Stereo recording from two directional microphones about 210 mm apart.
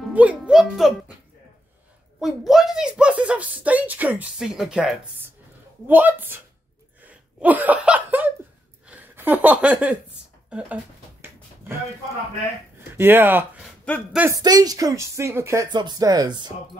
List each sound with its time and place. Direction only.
0.1 s a woman's voice: 5° right (ahead or behind)
2.1 s a woman's voice: centre (ahead or behind)
10.5 s a sound: 10° right (ahead or behind)
12.9 s speech: 10° right (ahead or behind)